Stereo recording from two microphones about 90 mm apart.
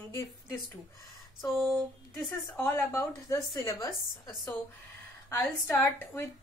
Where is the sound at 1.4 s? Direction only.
5° right (ahead or behind).